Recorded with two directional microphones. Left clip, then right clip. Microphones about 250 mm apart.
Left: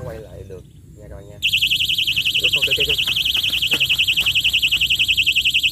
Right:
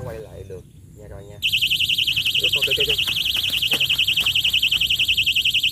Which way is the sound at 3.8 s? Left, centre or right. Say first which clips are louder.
Left 2 dB; centre.